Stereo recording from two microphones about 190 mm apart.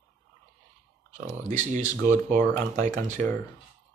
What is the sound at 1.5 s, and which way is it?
Speech, 40° right (ahead or behind).